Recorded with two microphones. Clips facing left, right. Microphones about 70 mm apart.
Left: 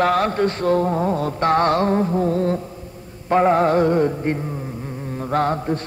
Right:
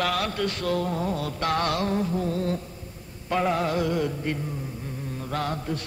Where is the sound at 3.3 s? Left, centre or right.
Left.